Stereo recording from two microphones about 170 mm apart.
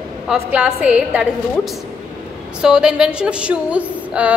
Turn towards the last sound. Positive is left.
turn(degrees=-10)  # may be behind; listen again after turning